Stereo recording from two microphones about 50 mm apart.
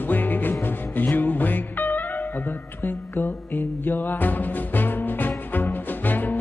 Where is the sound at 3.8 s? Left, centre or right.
Left.